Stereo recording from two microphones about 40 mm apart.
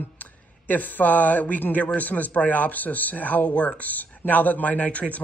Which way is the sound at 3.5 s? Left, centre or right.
Left.